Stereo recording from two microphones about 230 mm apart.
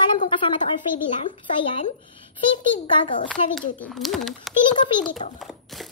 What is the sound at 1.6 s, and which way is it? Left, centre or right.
Speech, left.